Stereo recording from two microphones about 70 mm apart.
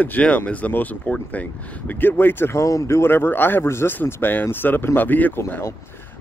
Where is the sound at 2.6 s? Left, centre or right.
Left.